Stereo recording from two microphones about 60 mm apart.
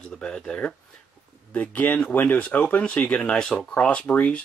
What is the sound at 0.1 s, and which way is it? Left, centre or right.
Speech, centre.